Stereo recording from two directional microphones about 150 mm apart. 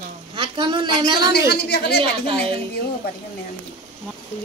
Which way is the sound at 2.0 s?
35° right (ahead or behind).